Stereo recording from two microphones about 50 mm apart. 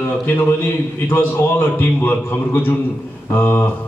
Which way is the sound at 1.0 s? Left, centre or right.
Left.